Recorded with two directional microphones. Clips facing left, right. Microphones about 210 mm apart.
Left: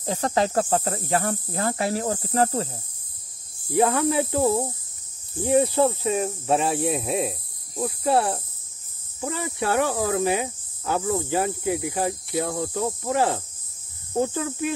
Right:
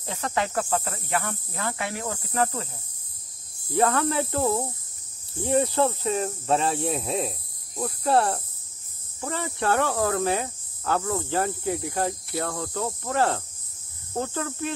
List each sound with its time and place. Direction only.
0.0 s speech: 35° left (ahead or behind)
3.7 s speech: 15° left (ahead or behind)